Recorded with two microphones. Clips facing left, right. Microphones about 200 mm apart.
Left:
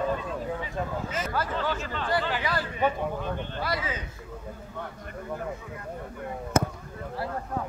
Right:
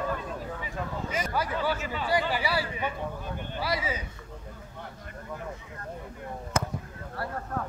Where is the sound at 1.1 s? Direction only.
10° right (ahead or behind).